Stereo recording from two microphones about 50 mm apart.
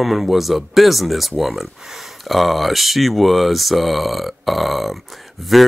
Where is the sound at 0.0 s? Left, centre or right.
Centre.